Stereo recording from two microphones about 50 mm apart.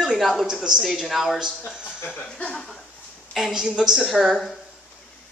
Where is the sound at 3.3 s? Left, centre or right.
Centre.